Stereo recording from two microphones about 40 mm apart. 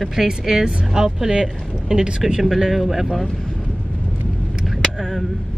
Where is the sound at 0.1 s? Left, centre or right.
Centre.